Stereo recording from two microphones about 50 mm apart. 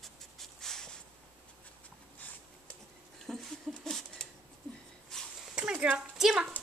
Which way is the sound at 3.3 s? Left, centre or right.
Centre.